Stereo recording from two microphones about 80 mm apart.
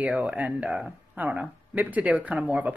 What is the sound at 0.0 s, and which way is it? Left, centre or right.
Speech, centre.